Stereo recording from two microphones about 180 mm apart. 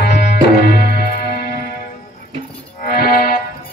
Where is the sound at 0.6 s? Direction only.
60° left (ahead or behind).